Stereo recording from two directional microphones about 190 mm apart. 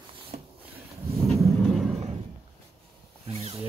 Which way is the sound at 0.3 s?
35° right (ahead or behind).